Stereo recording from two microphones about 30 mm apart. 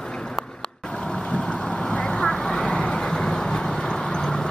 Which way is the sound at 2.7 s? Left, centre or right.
Left.